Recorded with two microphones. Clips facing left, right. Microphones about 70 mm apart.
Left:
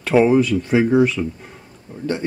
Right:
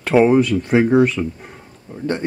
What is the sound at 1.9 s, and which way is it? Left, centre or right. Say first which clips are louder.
Speech: right 2 dB; right.